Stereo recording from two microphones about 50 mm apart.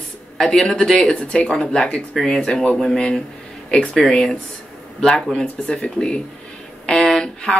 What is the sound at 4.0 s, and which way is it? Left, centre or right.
Speech, centre.